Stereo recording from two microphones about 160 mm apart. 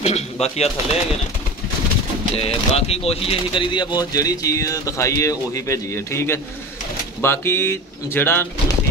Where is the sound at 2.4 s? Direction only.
40° left (ahead or behind).